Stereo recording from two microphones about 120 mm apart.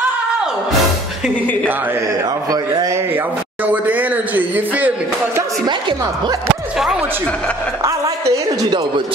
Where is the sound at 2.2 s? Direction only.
30° right (ahead or behind); by 4.6 s 15° right (ahead or behind).